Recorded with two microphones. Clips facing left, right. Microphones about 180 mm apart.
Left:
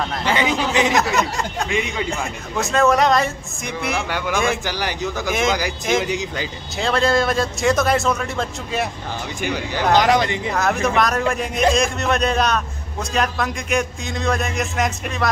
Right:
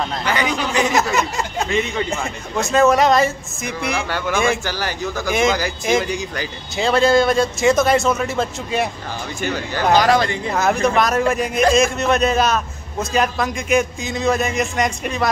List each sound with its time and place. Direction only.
0.2 s a man's voice: 25° left (ahead or behind)
0.9 s speech: centre (ahead or behind)
1.7 s speech: 15° left (ahead or behind)
2.0 s speech: centre (ahead or behind)
4.6 s speech: 15° left (ahead or behind)
5.3 s speech: centre (ahead or behind)
6.0 s a man's voice: 20° left (ahead or behind)
6.8 s speech: centre (ahead or behind)
9.4 s a man's voice: 15° left (ahead or behind)
10.5 s speech: centre (ahead or behind)